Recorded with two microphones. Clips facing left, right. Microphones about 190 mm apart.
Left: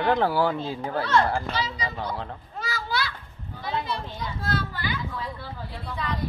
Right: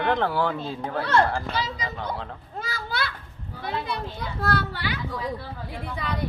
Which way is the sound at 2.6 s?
55° right (ahead or behind).